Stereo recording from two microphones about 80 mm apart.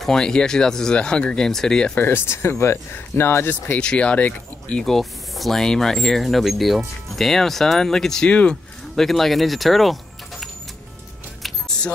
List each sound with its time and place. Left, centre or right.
0.0 s speech: centre
2.0 s speech: left
3.8 s speech: centre
11.4 s music: centre